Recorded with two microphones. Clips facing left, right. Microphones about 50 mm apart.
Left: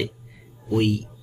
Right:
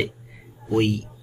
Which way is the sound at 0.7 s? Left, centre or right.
Centre.